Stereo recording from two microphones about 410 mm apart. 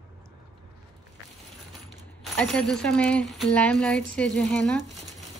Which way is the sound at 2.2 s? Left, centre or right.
Centre.